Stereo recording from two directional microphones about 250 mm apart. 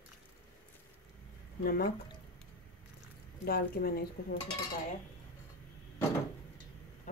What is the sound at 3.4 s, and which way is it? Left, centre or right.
Speech, left.